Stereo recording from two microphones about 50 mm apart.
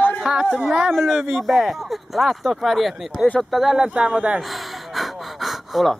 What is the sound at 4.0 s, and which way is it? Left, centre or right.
Speech, right.